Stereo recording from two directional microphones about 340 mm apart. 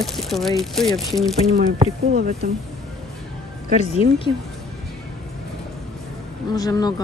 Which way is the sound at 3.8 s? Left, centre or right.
Centre.